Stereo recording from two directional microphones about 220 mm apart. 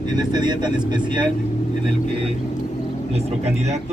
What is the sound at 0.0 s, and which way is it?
Speech, 20° right (ahead or behind).